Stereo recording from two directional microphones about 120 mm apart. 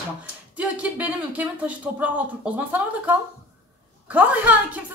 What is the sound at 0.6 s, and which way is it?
Speech, 10° right (ahead or behind).